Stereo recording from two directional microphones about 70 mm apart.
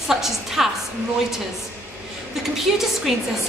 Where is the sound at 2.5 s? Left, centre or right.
Centre.